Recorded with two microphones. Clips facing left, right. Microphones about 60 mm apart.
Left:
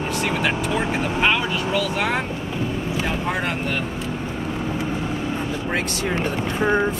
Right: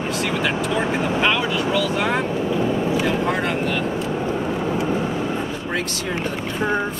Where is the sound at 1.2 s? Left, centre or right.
Centre.